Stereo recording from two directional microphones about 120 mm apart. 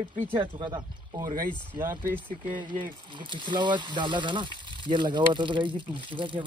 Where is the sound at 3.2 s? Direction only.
40° right (ahead or behind).